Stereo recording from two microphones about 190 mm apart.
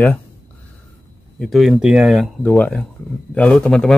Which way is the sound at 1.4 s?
Centre (ahead or behind).